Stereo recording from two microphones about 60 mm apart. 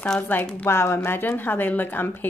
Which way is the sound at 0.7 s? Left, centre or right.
Left.